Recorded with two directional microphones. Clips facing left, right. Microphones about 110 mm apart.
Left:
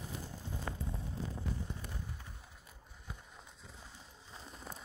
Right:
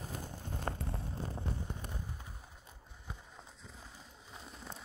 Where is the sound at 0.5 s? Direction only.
60° right (ahead or behind).